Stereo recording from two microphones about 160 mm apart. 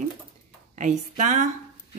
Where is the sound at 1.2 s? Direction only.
50° right (ahead or behind).